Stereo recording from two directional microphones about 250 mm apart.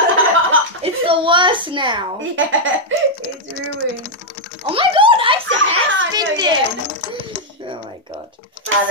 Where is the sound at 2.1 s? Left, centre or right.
Right.